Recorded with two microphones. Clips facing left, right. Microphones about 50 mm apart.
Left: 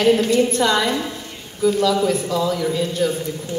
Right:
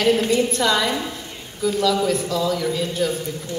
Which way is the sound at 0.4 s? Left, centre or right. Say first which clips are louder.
Left 2 dB; centre.